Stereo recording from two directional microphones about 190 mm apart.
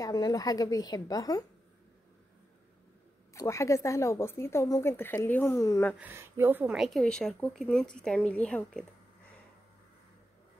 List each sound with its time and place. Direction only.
0.0 s a woman's voice: 20° left (ahead or behind)
3.3 s a woman's voice: 15° left (ahead or behind)
5.9 s speech: 10° right (ahead or behind); by 8.8 s 5° left (ahead or behind)